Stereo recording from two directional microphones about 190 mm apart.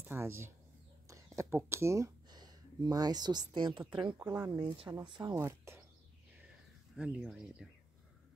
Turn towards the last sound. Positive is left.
turn(degrees=-5)  # may be behind; listen again after turning